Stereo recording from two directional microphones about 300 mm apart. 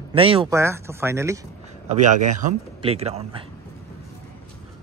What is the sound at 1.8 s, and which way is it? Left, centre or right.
Speech, right.